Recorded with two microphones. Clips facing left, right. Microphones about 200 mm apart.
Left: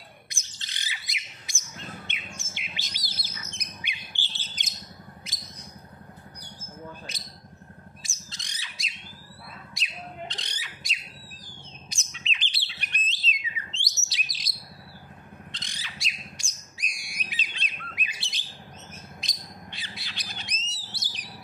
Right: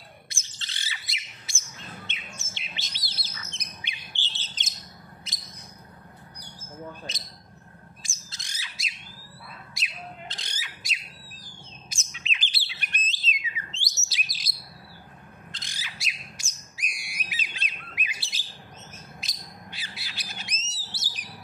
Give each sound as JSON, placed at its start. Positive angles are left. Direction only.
{"t": 0.3, "sound": "bird", "side_deg": 15}
{"t": 8.0, "sound": "squawk", "side_deg": 0}
{"t": 9.8, "sound": "bird", "side_deg": 0}
{"t": 14.0, "sound": "chirp", "side_deg": 0}
{"t": 15.5, "sound": "bird", "side_deg": 0}